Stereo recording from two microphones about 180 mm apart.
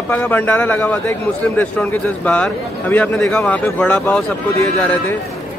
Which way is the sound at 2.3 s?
10° left (ahead or behind).